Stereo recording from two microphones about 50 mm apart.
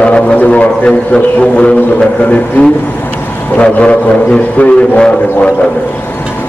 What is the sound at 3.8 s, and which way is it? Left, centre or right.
Speech, left.